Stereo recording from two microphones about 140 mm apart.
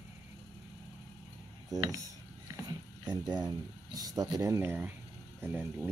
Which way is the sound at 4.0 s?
25° right (ahead or behind).